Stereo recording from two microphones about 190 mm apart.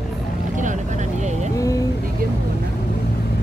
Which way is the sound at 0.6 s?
40° right (ahead or behind).